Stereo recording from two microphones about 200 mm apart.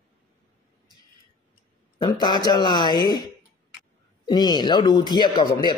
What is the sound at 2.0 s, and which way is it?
Speech, 20° left (ahead or behind).